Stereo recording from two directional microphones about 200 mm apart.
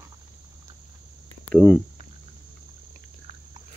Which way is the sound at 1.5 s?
5° left (ahead or behind).